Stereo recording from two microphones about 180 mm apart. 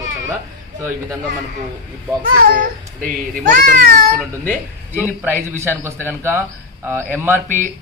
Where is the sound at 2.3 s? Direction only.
55° right (ahead or behind).